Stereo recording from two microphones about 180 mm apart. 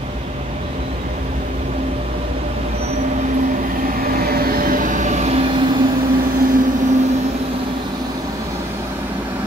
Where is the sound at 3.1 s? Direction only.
45° right (ahead or behind).